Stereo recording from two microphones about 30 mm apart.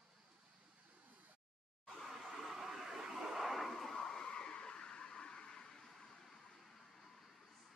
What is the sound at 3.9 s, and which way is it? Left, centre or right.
Vehicle, left.